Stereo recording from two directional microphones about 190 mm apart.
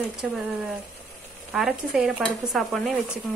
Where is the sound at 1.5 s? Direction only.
Centre (ahead or behind).